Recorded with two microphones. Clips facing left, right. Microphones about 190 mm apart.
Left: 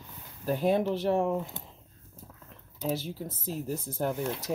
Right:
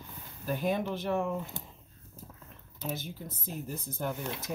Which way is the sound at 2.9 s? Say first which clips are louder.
Left 6 dB; 30° left (ahead or behind).